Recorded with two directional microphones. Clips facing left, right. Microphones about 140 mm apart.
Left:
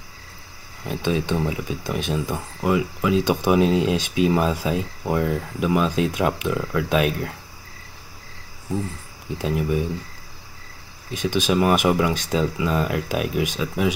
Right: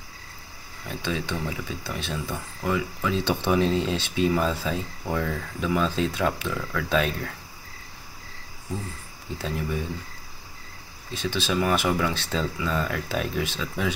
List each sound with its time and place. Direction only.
0.8 s speech: 20° left (ahead or behind)
9.4 s speech: 15° left (ahead or behind)
11.1 s speech: 15° left (ahead or behind)